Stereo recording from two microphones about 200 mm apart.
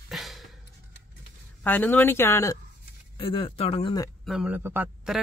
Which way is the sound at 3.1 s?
25° left (ahead or behind).